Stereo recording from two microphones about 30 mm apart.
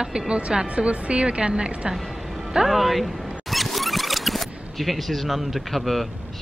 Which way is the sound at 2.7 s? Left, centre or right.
Centre.